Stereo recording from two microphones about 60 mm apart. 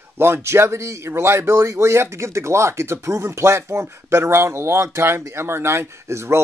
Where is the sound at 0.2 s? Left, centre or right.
Right.